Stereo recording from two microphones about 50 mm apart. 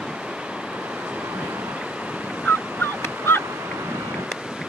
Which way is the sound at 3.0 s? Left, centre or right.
Left.